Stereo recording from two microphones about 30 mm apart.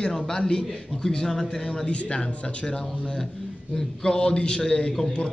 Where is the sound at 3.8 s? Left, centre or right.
Left.